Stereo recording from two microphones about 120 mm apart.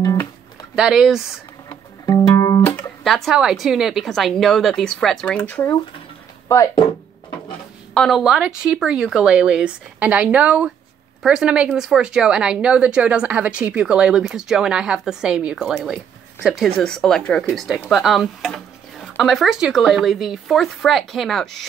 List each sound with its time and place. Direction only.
0.0 s music: 30° left (ahead or behind)
0.7 s speech: 5° right (ahead or behind)
1.7 s music: 30° left (ahead or behind)
3.0 s speech: centre (ahead or behind)
6.5 s speech: 25° left (ahead or behind)
7.9 s a woman's voice: 5° left (ahead or behind)
8.2 s speech: 5° right (ahead or behind)